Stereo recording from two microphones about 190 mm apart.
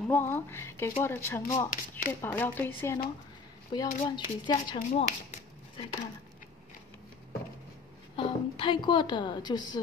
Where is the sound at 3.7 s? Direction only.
25° left (ahead or behind).